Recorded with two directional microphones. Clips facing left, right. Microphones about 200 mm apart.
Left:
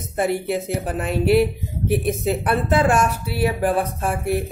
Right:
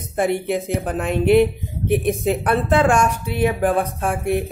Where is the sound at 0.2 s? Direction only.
Centre (ahead or behind).